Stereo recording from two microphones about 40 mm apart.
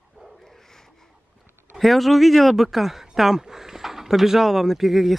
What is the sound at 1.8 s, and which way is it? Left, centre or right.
Speech, centre.